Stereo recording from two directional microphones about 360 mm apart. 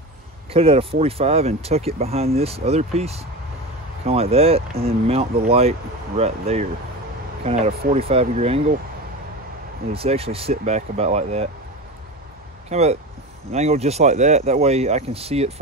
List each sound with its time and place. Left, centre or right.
0.5 s speech: centre
9.9 s speech: centre
12.6 s speech: centre